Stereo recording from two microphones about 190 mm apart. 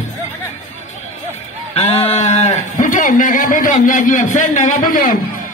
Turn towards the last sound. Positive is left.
turn(degrees=45)  # may be behind; listen again after turning